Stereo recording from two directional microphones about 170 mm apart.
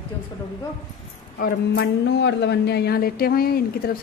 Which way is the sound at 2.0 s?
90° left.